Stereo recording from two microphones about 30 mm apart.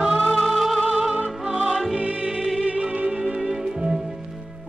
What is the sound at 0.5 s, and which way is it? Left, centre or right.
Music, centre.